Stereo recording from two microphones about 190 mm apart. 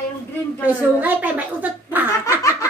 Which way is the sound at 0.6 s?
10° right (ahead or behind).